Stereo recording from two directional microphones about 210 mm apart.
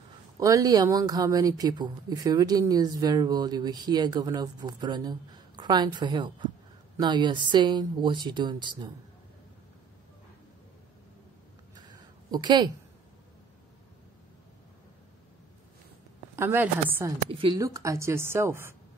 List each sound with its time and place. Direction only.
0.4 s speech: 15° right (ahead or behind)
11.7 s a sound: 20° right (ahead or behind)
16.3 s speech: 10° right (ahead or behind)
17.3 s speech: 25° right (ahead or behind)